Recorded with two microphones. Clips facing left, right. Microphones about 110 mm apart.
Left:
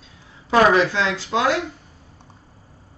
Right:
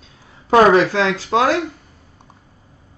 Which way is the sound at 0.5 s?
45° right (ahead or behind).